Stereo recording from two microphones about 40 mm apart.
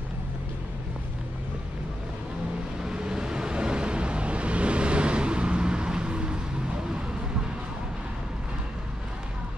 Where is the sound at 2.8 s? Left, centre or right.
Centre.